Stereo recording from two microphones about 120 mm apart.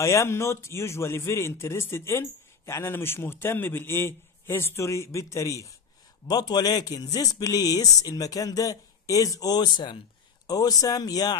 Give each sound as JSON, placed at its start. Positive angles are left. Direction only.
{"t": 0.0, "sound": "a man's voice", "side_deg": 25}